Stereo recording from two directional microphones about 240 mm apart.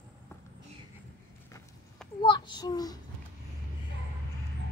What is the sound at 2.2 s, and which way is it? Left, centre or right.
Speech, centre.